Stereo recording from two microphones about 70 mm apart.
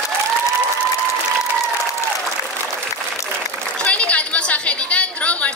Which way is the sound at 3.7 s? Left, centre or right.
Centre.